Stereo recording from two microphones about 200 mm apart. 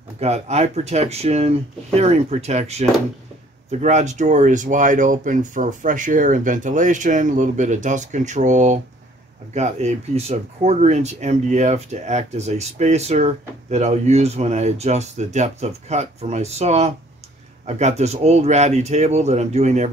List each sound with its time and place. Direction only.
0.2 s speech: 35° right (ahead or behind)